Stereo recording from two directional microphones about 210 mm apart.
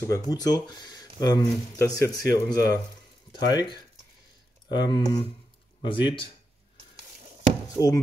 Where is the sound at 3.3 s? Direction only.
20° left (ahead or behind).